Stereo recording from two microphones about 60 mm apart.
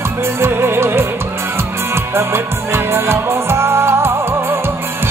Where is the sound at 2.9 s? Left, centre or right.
Right.